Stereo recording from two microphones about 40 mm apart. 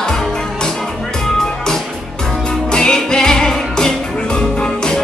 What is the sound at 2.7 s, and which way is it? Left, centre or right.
Music, centre.